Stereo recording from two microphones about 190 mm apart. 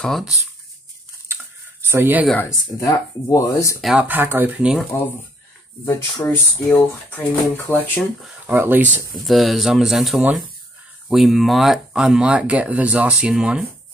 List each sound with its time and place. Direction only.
0.0 s speech: centre (ahead or behind)
1.3 s tick-tock: 10° right (ahead or behind)
2.8 s speech: 20° left (ahead or behind)
3.8 s speech: 5° right (ahead or behind)
5.9 s speech: 10° left (ahead or behind)
8.5 s speech: 10° right (ahead or behind)